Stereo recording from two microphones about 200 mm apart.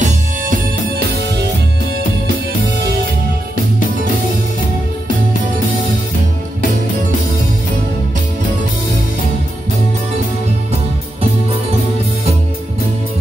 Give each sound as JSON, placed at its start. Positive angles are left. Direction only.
{"t": 0.0, "sound": "music", "side_deg": -40}